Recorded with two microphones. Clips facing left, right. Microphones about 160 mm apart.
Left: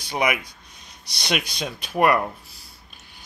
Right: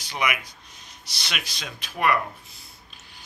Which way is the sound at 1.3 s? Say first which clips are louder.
Left 10 dB; 35° left (ahead or behind).